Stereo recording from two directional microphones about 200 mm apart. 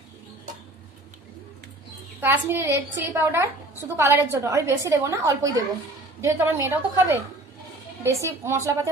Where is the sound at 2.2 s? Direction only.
10° right (ahead or behind).